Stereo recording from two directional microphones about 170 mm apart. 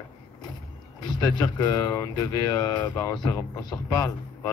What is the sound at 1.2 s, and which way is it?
Speech, 25° left (ahead or behind).